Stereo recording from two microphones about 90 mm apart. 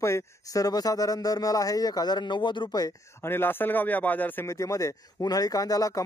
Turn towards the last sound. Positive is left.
turn(degrees=40)  # may be behind; listen again after turning